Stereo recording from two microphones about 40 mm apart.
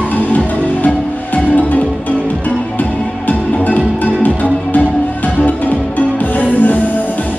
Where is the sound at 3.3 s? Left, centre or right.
Left.